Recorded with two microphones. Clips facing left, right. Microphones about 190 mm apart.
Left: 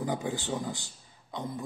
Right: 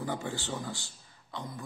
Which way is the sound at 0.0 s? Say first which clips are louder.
Left 3 dB; 15° left (ahead or behind).